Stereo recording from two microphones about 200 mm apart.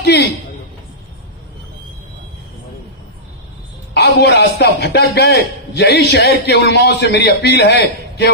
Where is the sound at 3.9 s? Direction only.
55° left (ahead or behind).